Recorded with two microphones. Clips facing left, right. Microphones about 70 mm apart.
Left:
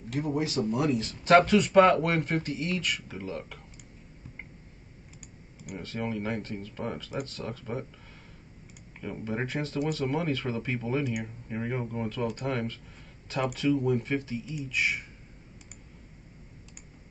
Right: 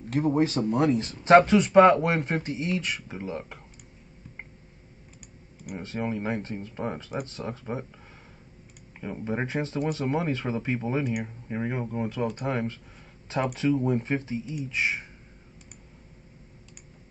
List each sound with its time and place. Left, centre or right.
0.1 s speech: right
5.8 s speech: right
9.0 s speech: centre